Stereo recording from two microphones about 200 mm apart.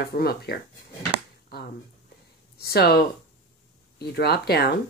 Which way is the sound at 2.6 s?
50° left (ahead or behind).